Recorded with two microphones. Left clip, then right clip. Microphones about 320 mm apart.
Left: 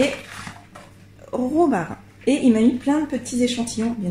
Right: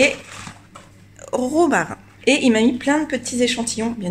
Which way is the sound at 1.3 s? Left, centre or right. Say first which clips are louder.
Right 2 dB; right.